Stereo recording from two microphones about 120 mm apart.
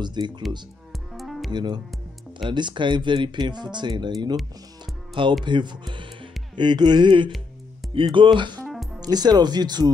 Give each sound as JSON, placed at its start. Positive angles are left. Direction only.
{"t": 0.0, "sound": "speech", "side_deg": -40}
{"t": 1.1, "sound": "music", "side_deg": 0}
{"t": 1.5, "sound": "speech", "side_deg": -40}
{"t": 5.4, "sound": "speech", "side_deg": -40}